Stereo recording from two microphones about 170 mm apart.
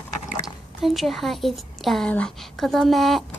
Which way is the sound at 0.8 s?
Centre (ahead or behind).